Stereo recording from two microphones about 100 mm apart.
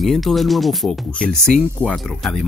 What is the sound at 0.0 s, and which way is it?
Speech, centre (ahead or behind).